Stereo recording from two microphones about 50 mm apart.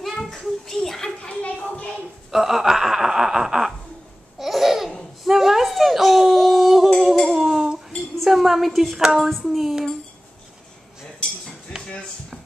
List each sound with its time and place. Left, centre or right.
0.0 s children playing: centre
1.4 s a sound: left
2.3 s speech: centre
4.4 s laughter: centre
5.2 s whimper: centre
7.2 s cutlery: centre
8.3 s a woman's voice: centre
9.5 s dishes: centre
11.7 s a sound: left